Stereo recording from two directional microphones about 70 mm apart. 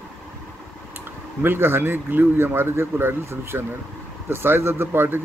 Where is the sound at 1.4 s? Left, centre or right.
Right.